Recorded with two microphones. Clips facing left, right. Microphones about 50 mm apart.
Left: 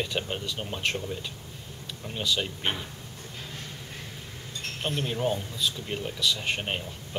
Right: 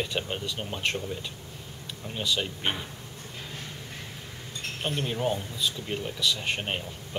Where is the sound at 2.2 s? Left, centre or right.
Centre.